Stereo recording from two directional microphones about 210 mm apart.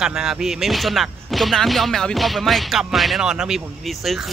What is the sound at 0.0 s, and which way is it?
Speech, centre (ahead or behind).